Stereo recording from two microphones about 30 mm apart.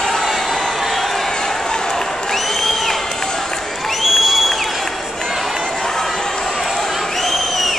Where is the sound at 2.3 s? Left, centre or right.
Centre.